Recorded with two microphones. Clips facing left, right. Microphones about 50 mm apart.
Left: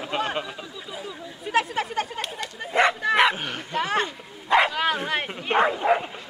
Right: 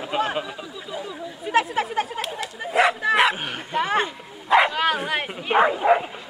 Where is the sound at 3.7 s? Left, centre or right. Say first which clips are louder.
Right 3 dB; centre.